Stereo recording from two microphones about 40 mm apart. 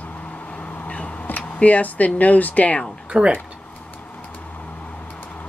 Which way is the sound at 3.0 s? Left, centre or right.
Right.